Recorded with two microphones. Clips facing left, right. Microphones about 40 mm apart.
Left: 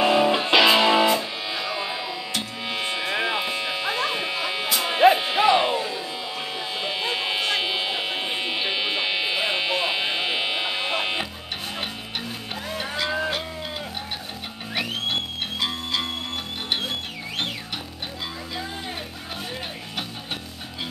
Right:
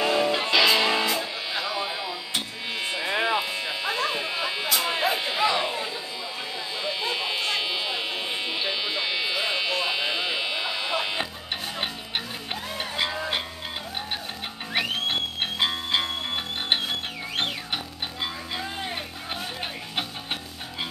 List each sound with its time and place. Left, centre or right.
0.0 s music: left
1.6 s music: centre
2.7 s music: left
3.1 s a sound: centre
3.4 s music: left
6.8 s electric shaver: centre
14.7 s music: centre